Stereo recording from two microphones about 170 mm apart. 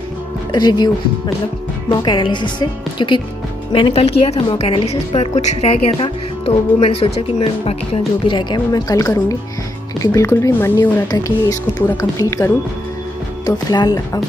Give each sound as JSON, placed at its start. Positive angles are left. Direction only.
{"t": 0.5, "sound": "a woman's voice", "side_deg": 25}